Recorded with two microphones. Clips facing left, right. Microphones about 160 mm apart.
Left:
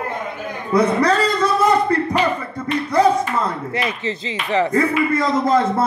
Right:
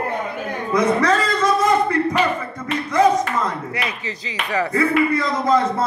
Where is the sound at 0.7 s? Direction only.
35° left (ahead or behind).